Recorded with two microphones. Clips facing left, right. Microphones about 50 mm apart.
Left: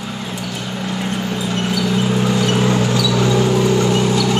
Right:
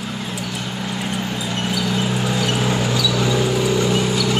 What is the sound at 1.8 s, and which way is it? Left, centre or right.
Vehicle, centre.